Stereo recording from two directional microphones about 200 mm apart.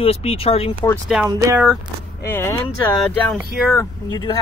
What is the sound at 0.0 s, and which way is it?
Speech, 30° left (ahead or behind).